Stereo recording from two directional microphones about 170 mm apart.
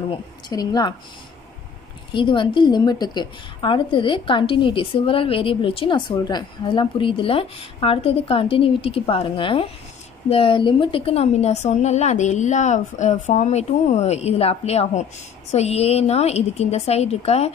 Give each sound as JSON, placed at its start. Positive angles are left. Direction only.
{"t": 0.5, "sound": "a woman's voice", "side_deg": 25}
{"t": 2.1, "sound": "a woman's voice", "side_deg": 30}